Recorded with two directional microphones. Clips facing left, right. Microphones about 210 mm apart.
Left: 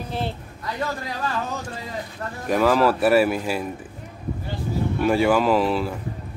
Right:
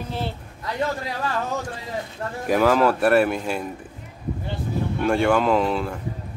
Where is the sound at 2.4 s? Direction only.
Centre (ahead or behind).